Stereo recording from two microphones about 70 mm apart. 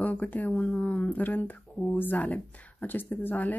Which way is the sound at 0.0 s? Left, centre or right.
Left.